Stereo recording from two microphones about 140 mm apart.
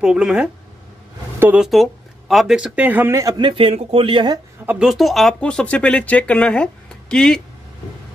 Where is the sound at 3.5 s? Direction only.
40° right (ahead or behind).